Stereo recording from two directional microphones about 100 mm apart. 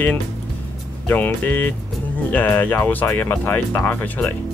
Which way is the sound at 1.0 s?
20° left (ahead or behind).